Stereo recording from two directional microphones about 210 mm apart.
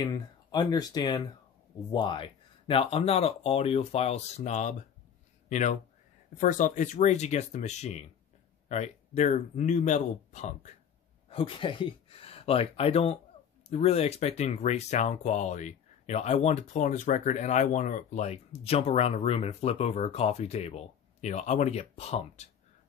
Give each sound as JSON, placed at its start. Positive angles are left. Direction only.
{"t": 0.0, "sound": "speech", "side_deg": 20}